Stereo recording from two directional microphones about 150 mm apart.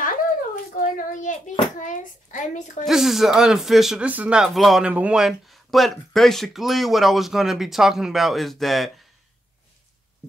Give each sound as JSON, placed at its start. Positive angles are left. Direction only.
{"t": 0.7, "sound": "a child's voice", "side_deg": 65}
{"t": 2.8, "sound": "speech", "side_deg": 0}